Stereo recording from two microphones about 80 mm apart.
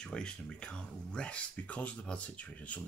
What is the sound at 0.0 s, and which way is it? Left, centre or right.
Speech, centre.